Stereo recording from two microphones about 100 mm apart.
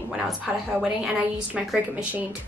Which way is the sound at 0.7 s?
5° right (ahead or behind).